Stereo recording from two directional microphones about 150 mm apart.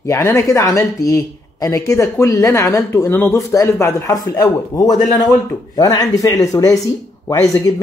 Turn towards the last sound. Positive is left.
turn(degrees=25)  # may be behind; listen again after turning